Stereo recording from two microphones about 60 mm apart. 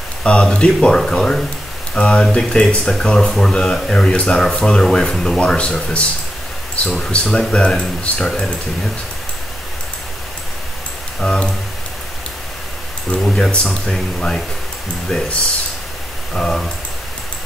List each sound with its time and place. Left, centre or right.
0.2 s speech: centre
11.1 s speech: centre
13.1 s speech: centre
15.0 s speech: centre
16.3 s speech: centre